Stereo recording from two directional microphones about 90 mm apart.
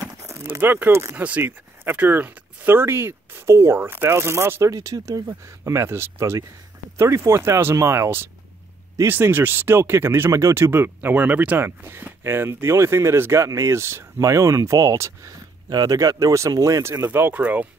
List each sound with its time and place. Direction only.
0.3 s speech: 25° right (ahead or behind)
4.7 s speech: 40° right (ahead or behind)
17.0 s speech: 25° right (ahead or behind)